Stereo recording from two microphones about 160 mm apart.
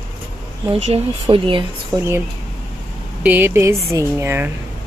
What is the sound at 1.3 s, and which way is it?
Speech, 30° right (ahead or behind).